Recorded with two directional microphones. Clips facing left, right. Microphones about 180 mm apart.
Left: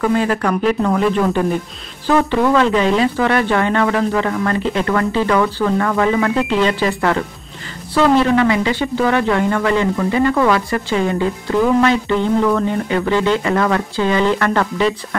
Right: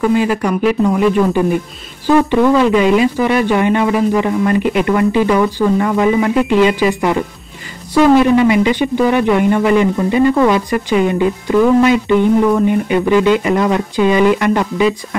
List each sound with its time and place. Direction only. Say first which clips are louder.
0.0 s speech: right 3 dB; 10° right (ahead or behind)